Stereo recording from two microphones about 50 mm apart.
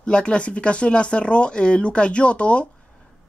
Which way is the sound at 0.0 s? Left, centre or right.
Left.